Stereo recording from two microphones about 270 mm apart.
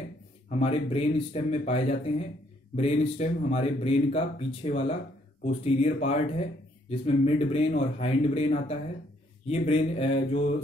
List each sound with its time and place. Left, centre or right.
0.5 s speech: left